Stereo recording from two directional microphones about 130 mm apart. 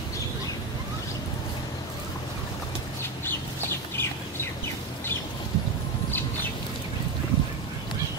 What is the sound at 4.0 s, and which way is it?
Bird, 15° left (ahead or behind).